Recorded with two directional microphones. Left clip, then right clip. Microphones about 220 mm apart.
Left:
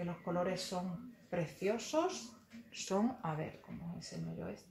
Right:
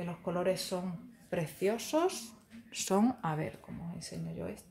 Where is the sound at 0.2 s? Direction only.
50° right (ahead or behind).